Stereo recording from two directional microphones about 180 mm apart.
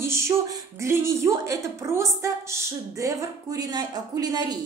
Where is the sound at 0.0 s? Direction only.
15° right (ahead or behind).